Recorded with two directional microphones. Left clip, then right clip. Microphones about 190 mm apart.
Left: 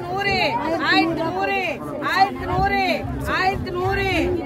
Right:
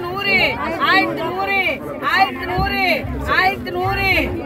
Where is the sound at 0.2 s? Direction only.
30° right (ahead or behind).